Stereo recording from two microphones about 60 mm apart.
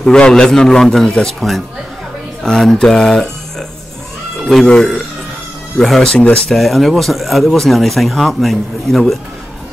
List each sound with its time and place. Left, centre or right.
0.0 s a man's voice: centre
5.8 s speech: centre
6.1 s a man's voice: centre
6.5 s speech: centre